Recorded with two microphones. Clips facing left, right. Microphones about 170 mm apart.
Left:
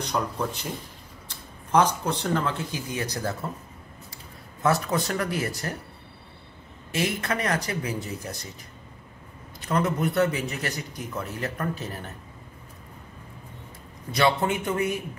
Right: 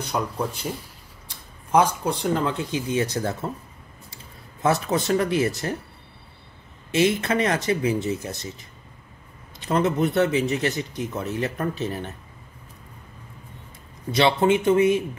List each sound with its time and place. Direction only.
0.0 s speech: 10° right (ahead or behind)
1.7 s speech: 10° right (ahead or behind)
4.6 s a man's voice: 20° right (ahead or behind)
6.9 s a man's voice: 20° right (ahead or behind)
9.7 s a man's voice: 20° right (ahead or behind)
14.1 s a man's voice: 20° right (ahead or behind)